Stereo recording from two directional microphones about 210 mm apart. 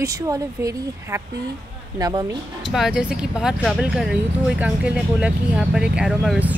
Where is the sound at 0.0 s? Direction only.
15° right (ahead or behind).